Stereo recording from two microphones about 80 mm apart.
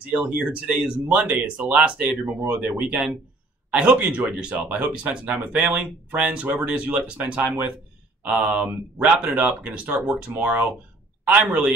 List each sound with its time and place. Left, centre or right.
0.0 s speech: centre